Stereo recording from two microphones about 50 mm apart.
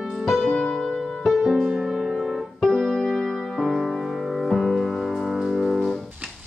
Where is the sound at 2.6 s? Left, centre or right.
Centre.